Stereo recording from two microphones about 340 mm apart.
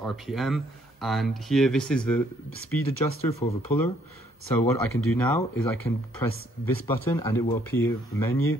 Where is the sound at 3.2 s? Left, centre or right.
Centre.